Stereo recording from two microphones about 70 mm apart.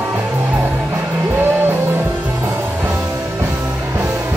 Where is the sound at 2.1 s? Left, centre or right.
Right.